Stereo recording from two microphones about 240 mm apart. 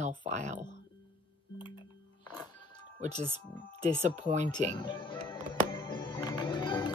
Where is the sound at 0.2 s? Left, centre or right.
Right.